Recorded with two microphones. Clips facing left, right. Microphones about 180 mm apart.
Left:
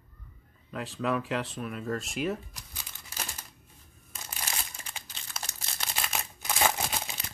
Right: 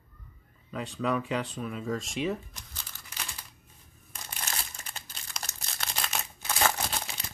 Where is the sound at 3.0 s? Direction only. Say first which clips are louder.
Left 3 dB; 40° left (ahead or behind).